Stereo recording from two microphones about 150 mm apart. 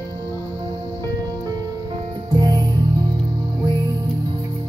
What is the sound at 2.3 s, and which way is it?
Music, 25° right (ahead or behind).